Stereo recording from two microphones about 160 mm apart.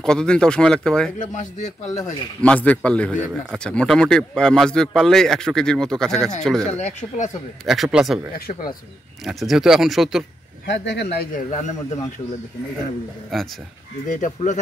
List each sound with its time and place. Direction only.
0.0 s speech: 5° left (ahead or behind)
1.2 s a man's voice: 50° left (ahead or behind)
2.4 s a man's voice: 10° left (ahead or behind)
8.5 s speech: 65° left (ahead or behind)
9.2 s speech: centre (ahead or behind)
10.7 s speech: 90° left
11.5 s a man's voice: 50° left (ahead or behind)
13.3 s speech: centre (ahead or behind)
14.0 s a man's voice: 50° left (ahead or behind)